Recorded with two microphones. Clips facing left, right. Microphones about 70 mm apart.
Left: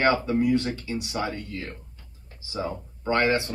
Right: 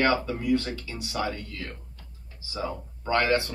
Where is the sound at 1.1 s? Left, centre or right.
Left.